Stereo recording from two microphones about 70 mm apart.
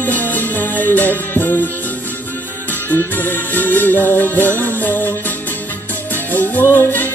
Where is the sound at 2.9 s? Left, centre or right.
Left.